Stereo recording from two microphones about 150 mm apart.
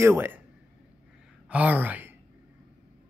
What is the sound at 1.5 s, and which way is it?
Speech, 10° right (ahead or behind).